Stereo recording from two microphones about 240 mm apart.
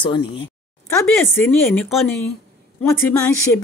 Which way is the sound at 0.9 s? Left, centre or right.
Centre.